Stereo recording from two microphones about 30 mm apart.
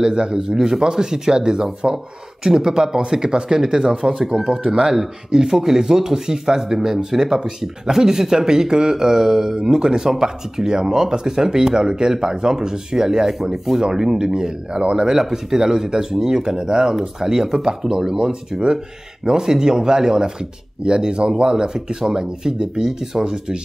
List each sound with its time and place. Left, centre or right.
0.0 s a man's voice: right
16.9 s a man's voice: centre